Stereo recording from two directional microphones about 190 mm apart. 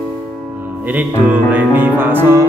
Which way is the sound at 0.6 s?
10° right (ahead or behind).